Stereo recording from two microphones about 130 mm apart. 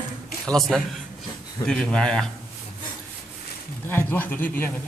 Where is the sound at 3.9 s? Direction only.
15° left (ahead or behind).